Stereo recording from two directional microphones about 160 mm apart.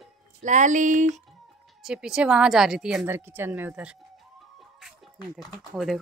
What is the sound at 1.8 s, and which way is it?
A woman's voice, 5° right (ahead or behind).